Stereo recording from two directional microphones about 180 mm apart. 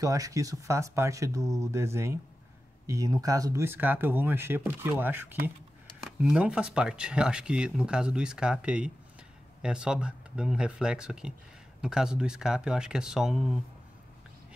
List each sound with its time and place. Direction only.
0.0 s speech: 20° right (ahead or behind); by 13.6 s centre (ahead or behind)